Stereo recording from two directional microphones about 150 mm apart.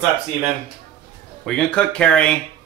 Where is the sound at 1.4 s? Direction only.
5° left (ahead or behind).